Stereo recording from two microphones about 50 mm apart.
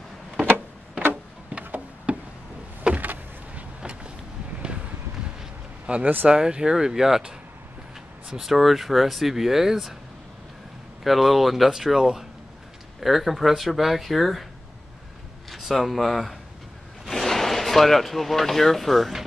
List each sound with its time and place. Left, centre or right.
1.6 s a sound: right
3.8 s vehicle: centre
5.9 s speech: right; by 7.3 s centre
8.4 s speech: centre
11.1 s speech: centre
15.5 s speech: centre